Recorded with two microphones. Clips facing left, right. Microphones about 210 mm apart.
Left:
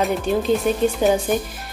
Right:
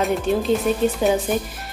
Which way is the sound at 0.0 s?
Centre (ahead or behind).